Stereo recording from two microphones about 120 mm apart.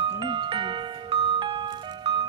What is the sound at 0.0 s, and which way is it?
Music, 50° right (ahead or behind).